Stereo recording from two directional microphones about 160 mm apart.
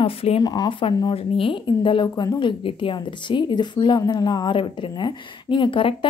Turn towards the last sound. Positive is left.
turn(degrees=30)  # may be behind; listen again after turning